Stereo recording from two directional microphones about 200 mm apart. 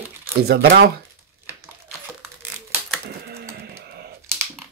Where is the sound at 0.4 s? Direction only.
55° right (ahead or behind).